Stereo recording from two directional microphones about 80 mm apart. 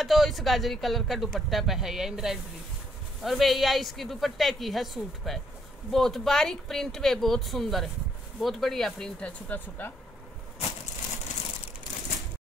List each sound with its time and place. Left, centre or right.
0.0 s speech: centre
9.5 s speech: left